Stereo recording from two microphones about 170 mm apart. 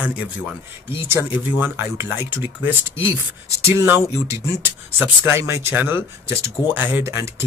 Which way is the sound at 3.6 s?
15° right (ahead or behind).